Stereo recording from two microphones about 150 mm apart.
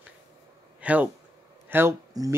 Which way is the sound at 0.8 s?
10° right (ahead or behind).